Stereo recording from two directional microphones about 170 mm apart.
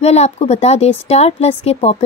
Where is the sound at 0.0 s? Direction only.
40° left (ahead or behind).